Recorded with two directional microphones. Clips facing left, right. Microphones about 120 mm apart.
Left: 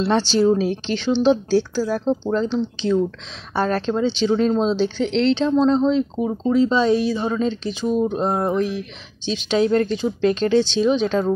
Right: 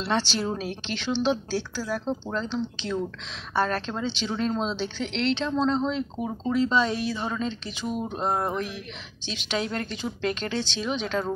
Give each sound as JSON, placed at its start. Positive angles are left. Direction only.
{"t": 0.0, "sound": "speech", "side_deg": 30}
{"t": 8.2, "sound": "speech", "side_deg": 20}